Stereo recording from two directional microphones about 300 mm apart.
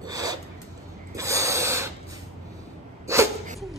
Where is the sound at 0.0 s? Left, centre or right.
Centre.